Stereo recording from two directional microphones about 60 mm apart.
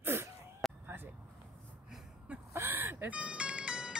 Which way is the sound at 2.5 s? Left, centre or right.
Right.